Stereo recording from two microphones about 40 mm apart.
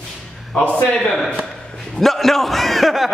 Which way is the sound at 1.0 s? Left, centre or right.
Centre.